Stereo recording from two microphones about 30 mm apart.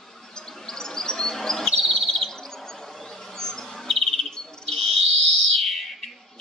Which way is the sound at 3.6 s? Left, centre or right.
Centre.